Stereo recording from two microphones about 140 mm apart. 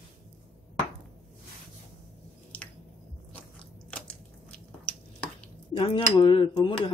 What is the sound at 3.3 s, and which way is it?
Biting, 10° left (ahead or behind).